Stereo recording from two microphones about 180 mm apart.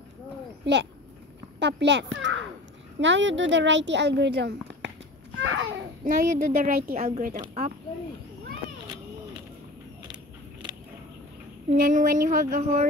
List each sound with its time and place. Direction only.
0.7 s a child's voice: 75° right (ahead or behind)
6.0 s speech: 45° right (ahead or behind)
11.7 s speech: 50° right (ahead or behind)